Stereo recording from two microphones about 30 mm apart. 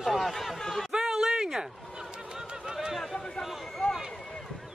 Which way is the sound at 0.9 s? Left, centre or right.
Centre.